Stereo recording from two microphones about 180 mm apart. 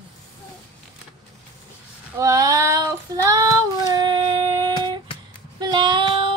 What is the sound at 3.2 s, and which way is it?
Child singing, 20° right (ahead or behind).